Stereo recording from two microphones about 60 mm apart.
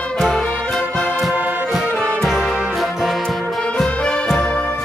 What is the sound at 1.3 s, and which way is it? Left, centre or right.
Music, right.